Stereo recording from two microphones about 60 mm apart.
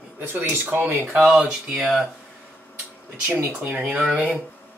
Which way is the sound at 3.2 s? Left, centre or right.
Right.